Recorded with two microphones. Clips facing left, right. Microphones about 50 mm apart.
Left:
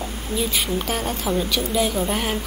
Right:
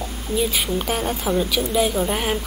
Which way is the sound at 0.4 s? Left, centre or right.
Centre.